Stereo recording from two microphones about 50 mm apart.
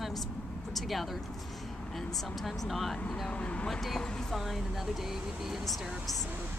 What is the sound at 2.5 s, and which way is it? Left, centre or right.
Speech, centre.